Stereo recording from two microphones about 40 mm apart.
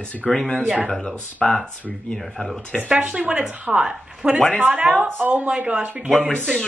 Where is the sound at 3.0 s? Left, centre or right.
Right.